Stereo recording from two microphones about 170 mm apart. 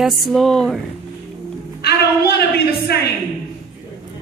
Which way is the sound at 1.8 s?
70° left (ahead or behind).